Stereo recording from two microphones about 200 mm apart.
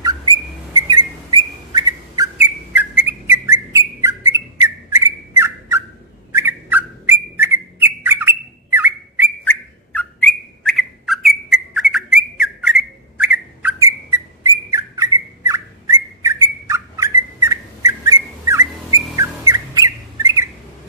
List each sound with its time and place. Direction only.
0.0 s whistle: 20° right (ahead or behind)
2.3 s whistle: 10° right (ahead or behind)
4.9 s bird: 15° right (ahead or behind)
9.4 s bird: 10° left (ahead or behind); by 20.4 s 15° right (ahead or behind)